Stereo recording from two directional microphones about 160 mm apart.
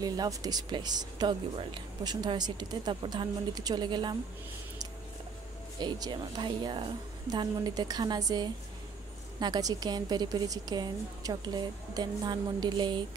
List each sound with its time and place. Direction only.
0.0 s speech: 25° right (ahead or behind)
5.8 s speech: 25° right (ahead or behind)